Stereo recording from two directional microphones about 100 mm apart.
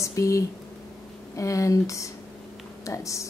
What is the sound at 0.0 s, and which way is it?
A woman's voice, 30° left (ahead or behind).